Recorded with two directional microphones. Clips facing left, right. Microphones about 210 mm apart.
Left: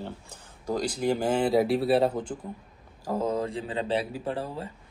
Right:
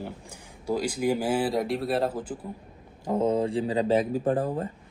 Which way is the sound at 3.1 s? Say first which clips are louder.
Right 4 dB; 25° right (ahead or behind).